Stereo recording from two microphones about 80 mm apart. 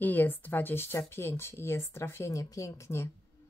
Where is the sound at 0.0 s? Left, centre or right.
Left.